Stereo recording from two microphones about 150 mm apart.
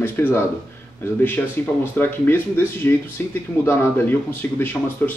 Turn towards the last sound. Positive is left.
turn(degrees=10)  # may be behind; listen again after turning